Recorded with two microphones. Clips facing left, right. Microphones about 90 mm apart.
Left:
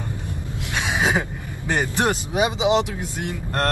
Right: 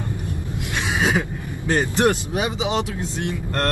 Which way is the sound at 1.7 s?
15° left (ahead or behind).